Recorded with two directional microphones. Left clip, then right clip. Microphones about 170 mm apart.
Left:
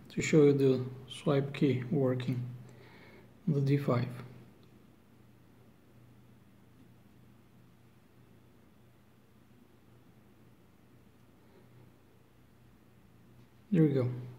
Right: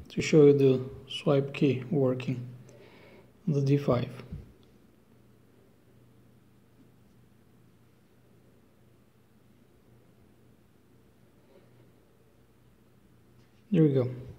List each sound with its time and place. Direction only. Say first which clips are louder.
0.1 s speech: right 5 dB; 20° right (ahead or behind)
3.0 s a sound: right 2 dB; 15° right (ahead or behind)
13.7 s speech: right 4 dB; 15° right (ahead or behind)